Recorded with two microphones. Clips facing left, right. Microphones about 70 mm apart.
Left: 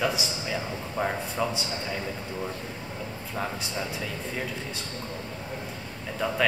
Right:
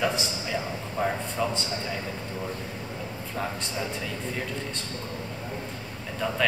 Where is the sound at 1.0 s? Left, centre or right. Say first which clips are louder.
Right 1 dB; centre.